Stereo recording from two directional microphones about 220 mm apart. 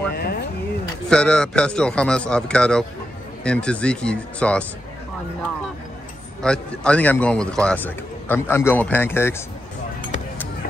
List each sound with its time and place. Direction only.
0.1 s a sound: 45° left (ahead or behind)
1.1 s a man's voice: 5° left (ahead or behind)
6.4 s a man's voice: 5° left (ahead or behind)